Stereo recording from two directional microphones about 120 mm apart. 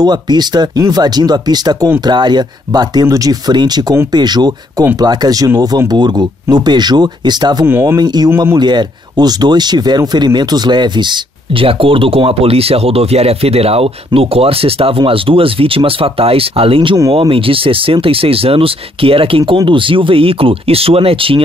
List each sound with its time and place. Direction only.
0.0 s speech: 35° right (ahead or behind)